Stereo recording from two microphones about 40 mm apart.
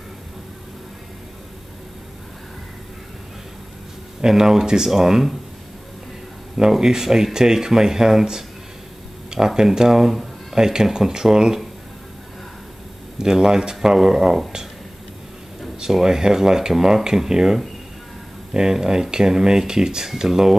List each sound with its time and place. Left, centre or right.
4.2 s speech: centre
6.5 s speech: centre
13.2 s speech: centre
15.8 s speech: centre